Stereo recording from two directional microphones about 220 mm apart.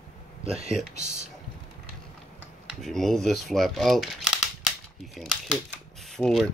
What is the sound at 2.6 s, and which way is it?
Speech, centre (ahead or behind).